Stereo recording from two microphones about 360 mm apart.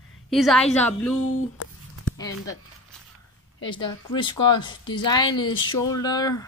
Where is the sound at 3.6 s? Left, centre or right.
Centre.